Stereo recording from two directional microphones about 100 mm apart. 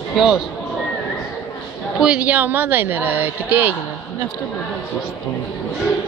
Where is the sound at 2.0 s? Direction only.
10° right (ahead or behind).